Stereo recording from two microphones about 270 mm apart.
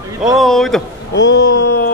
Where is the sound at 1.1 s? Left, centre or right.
Left.